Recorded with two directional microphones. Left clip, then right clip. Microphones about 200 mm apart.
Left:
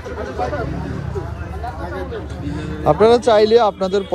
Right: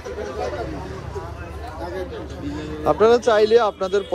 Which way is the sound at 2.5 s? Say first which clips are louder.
Left 4 dB; 15° right (ahead or behind).